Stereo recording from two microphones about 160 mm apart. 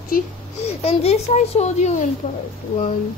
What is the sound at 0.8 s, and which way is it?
A child's voice, 40° left (ahead or behind).